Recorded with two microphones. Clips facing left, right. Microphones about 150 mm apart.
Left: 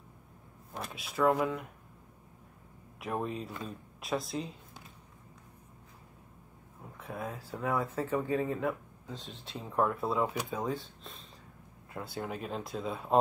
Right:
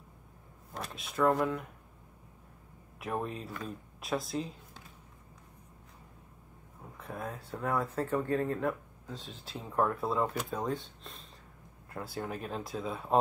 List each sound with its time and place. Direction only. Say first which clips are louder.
0.7 s speech: even; centre (ahead or behind)
3.0 s speech: left 1 dB; centre (ahead or behind)
7.0 s speech: left 1 dB; centre (ahead or behind)